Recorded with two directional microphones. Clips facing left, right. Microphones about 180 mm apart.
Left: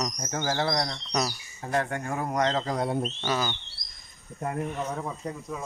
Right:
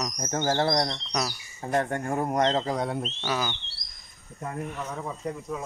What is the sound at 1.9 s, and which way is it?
Speech, 40° right (ahead or behind).